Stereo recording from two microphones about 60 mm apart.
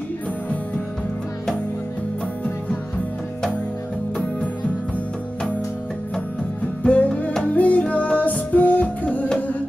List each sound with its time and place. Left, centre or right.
6.8 s music: left